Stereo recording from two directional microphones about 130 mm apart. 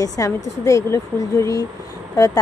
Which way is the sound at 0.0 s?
25° left (ahead or behind).